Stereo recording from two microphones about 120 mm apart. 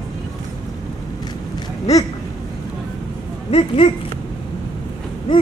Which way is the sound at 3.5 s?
50° left (ahead or behind).